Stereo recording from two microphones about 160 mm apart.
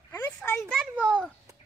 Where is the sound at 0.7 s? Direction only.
5° right (ahead or behind).